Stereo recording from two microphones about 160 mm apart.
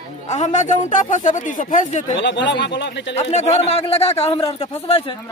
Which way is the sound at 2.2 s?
90° left.